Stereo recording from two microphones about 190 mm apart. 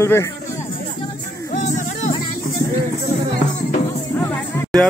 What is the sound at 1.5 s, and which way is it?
Music, 40° left (ahead or behind).